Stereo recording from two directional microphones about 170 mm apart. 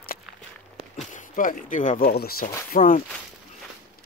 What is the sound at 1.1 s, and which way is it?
Speech, 50° left (ahead or behind).